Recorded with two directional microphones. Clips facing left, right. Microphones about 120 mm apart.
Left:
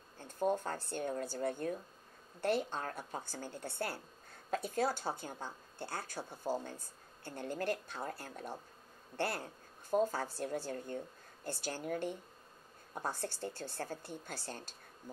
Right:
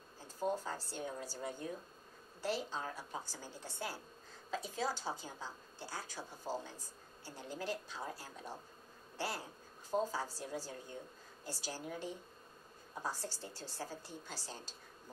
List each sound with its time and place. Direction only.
0.4 s a woman's voice: 55° left (ahead or behind)